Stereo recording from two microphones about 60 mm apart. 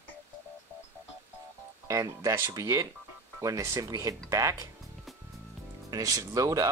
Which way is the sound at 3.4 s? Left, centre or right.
Right.